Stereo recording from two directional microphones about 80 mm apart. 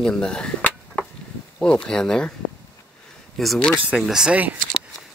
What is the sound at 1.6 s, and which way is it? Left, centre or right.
Speech, centre.